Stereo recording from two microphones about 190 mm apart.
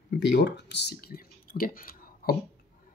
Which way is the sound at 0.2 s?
65° left (ahead or behind).